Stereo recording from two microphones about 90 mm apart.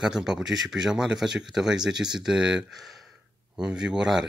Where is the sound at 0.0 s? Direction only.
5° right (ahead or behind).